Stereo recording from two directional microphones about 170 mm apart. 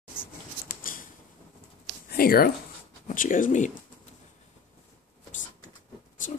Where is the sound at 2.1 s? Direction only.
60° left (ahead or behind).